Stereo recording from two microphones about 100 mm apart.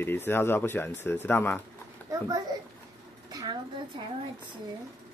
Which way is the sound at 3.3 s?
40° right (ahead or behind).